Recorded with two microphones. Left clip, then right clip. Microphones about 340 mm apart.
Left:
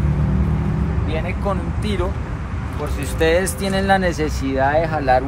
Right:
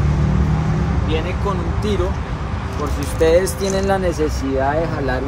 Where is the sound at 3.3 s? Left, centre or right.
Left.